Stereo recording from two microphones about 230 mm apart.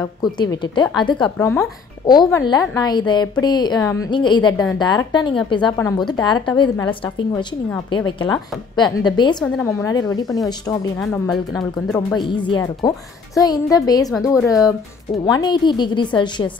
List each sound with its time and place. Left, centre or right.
0.0 s a woman's voice: centre
7.7 s a woman's voice: centre
9.4 s a woman's voice: centre
12.2 s a woman's voice: left